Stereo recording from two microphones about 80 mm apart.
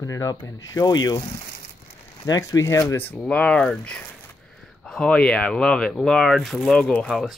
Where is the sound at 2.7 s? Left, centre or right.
Left.